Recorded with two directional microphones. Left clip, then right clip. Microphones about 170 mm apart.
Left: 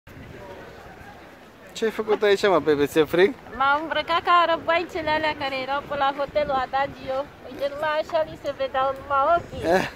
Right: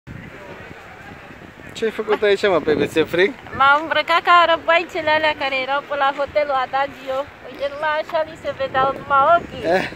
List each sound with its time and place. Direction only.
1.8 s speech: centre (ahead or behind)
3.5 s speech: 5° right (ahead or behind)